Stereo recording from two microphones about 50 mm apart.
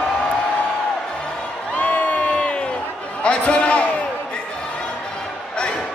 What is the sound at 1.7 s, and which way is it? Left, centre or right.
Crowd, left.